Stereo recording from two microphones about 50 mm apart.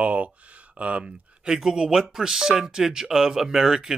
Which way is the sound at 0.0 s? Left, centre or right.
Right.